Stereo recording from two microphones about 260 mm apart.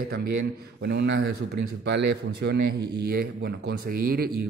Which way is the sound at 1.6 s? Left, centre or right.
Right.